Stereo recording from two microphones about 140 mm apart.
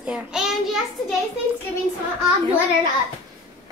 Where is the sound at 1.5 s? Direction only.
45° right (ahead or behind).